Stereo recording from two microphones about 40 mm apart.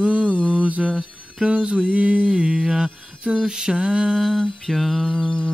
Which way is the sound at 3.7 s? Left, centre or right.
Right.